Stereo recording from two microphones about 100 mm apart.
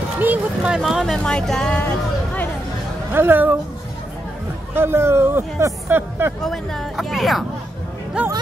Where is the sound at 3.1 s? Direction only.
20° right (ahead or behind).